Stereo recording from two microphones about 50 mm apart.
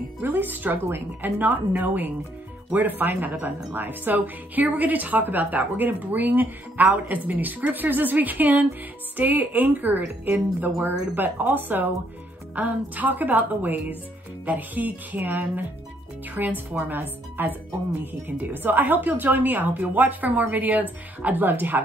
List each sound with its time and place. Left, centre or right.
0.2 s speech: right